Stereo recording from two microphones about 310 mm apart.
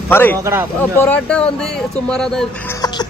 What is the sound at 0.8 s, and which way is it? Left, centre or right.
Speech, centre.